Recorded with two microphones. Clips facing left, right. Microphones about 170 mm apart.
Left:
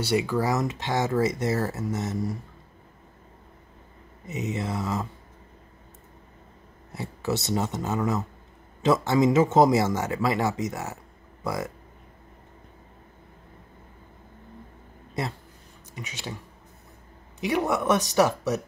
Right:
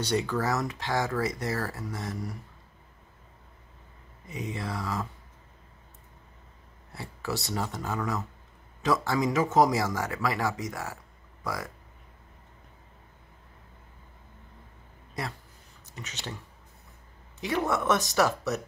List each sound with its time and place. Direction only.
0.0 s speech: 10° left (ahead or behind)
4.3 s speech: 20° left (ahead or behind)
6.9 s speech: 20° left (ahead or behind)
15.9 s speech: 10° left (ahead or behind)
17.4 s speech: 15° left (ahead or behind)